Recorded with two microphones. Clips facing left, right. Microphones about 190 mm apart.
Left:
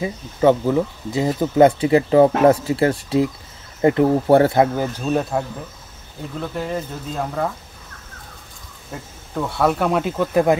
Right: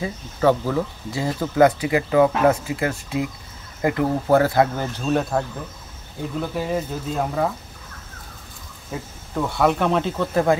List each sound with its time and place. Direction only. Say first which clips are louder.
0.0 s speech: left 3 dB; 20° left (ahead or behind)
4.7 s speech: left 2 dB; 10° left (ahead or behind)
6.4 s speech: even; 5° right (ahead or behind)
8.9 s speech: even; centre (ahead or behind)